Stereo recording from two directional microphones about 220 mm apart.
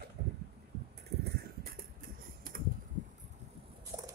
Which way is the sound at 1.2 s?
45° right (ahead or behind).